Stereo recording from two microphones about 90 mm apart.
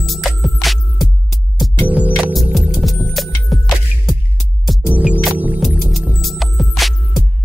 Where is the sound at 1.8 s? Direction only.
15° right (ahead or behind).